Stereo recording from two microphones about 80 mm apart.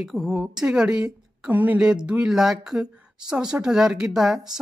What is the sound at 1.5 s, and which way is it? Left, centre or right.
Speech, right.